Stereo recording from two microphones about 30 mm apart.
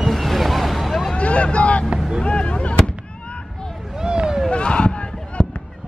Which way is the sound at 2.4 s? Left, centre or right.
Left.